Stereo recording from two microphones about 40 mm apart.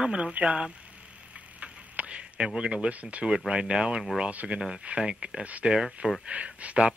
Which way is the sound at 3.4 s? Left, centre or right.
Right.